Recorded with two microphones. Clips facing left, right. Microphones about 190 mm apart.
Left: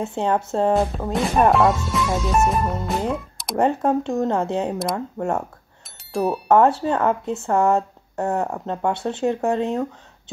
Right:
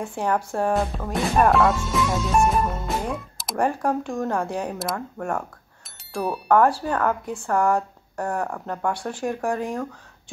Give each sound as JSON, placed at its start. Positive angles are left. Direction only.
{"t": 0.0, "sound": "speech", "side_deg": 25}
{"t": 1.5, "sound": "speech", "side_deg": 0}
{"t": 3.5, "sound": "speech", "side_deg": 25}
{"t": 6.1, "sound": "speech", "side_deg": 0}
{"t": 6.5, "sound": "speech", "side_deg": 25}